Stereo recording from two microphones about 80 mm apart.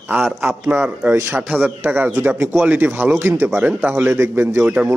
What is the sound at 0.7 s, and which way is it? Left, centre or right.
Speech, right.